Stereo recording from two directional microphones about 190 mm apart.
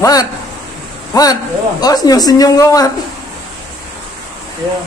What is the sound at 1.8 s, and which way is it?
Speech, 20° left (ahead or behind).